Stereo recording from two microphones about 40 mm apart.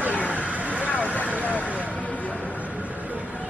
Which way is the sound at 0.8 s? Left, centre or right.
Left.